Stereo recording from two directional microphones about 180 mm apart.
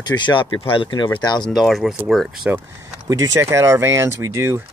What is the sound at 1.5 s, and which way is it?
Speech, centre (ahead or behind).